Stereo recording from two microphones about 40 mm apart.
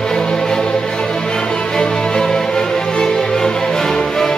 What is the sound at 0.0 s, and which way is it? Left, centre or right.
Music, centre.